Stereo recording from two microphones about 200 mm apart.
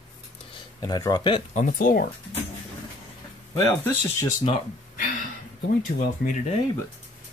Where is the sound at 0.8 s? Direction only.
20° left (ahead or behind).